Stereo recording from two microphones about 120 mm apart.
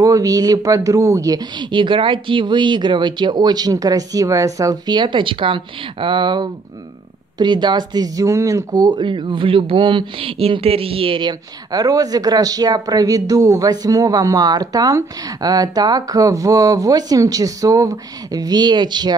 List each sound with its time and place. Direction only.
0.0 s speech: 30° right (ahead or behind)